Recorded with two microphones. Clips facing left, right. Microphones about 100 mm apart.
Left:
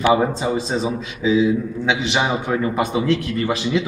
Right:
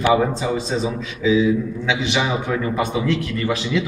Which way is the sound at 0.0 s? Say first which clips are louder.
Left 1 dB; 30° left (ahead or behind).